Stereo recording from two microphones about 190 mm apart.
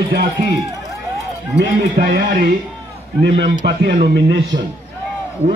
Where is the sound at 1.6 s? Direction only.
60° right (ahead or behind).